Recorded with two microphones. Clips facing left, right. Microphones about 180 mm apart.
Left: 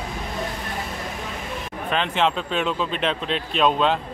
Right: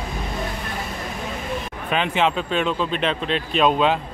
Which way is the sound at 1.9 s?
5° right (ahead or behind).